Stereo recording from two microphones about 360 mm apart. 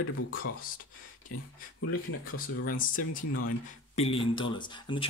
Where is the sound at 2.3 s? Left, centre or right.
Left.